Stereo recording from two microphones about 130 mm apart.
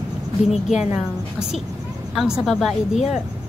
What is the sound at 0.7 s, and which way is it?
Speech, 5° right (ahead or behind).